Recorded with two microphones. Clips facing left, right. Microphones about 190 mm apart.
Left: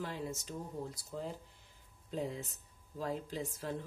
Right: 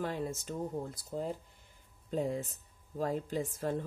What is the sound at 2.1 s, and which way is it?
A woman's voice, 50° right (ahead or behind).